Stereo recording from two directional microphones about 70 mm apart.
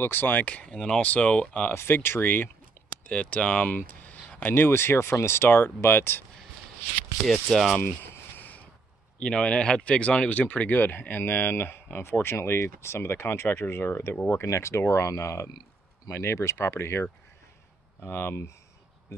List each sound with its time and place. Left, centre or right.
0.0 s speech: left
1.7 s speech: left
3.1 s speech: centre
7.5 s speech: centre
7.8 s a sound: left
9.2 s speech: centre; by 18.5 s left